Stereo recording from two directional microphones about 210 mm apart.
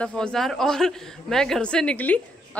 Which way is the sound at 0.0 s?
5° left (ahead or behind).